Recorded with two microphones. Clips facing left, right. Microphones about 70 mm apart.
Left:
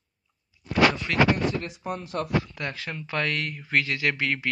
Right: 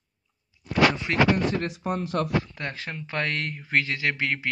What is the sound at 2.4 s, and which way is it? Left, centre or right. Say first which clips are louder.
Speech: left 1 dB; right.